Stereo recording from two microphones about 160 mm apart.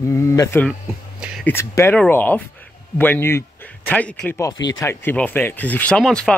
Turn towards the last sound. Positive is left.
turn(degrees=5)  # may be behind; listen again after turning